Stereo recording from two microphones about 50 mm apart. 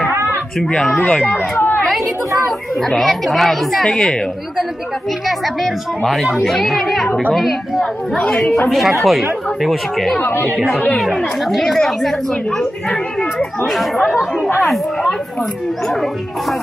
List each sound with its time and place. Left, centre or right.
0.7 s speech: left
1.2 s a sound: left
3.0 s speech: centre
5.6 s speech: centre
10.2 s speech: left
11.0 s speech: centre
13.7 s speech: centre